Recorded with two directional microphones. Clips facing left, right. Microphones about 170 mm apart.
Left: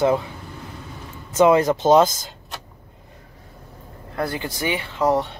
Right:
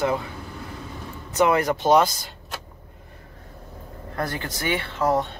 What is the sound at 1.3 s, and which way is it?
Speech, 20° left (ahead or behind).